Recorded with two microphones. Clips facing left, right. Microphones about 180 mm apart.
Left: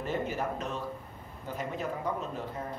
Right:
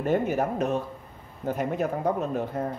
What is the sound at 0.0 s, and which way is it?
Speech, 55° right (ahead or behind).